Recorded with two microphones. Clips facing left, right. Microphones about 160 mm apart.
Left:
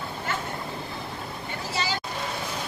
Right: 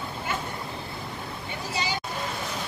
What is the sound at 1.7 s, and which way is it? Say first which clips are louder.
Vehicle: left 1 dB; 15° right (ahead or behind).